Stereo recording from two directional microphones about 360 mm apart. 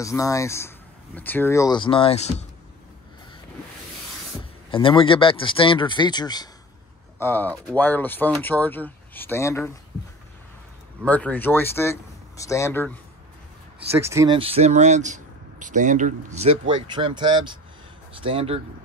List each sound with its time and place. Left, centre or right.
0.0 s speech: centre
4.6 s speech: centre
11.0 s speech: centre
13.7 s speech: centre